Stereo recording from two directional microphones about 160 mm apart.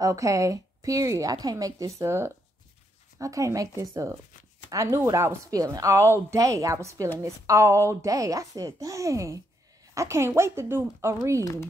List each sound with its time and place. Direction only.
0.0 s a woman's voice: 20° right (ahead or behind)